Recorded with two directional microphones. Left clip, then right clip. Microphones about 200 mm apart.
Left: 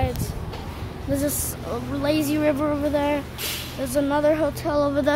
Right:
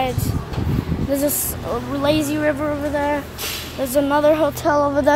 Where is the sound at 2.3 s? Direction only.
20° left (ahead or behind).